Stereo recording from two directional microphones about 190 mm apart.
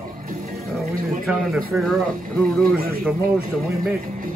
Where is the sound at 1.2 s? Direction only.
Centre (ahead or behind).